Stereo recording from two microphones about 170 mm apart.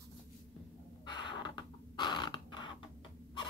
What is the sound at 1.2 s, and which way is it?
Rodents, 25° left (ahead or behind).